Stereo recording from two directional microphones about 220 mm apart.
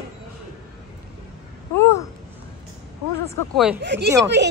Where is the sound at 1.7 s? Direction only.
10° left (ahead or behind).